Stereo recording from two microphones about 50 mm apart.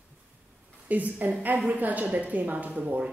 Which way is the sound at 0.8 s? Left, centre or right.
Right.